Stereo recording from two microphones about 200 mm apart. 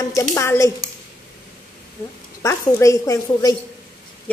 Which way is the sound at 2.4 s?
15° left (ahead or behind).